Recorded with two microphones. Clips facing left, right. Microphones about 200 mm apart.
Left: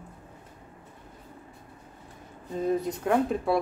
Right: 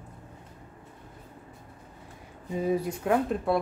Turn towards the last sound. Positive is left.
turn(degrees=0)  # may be behind; listen again after turning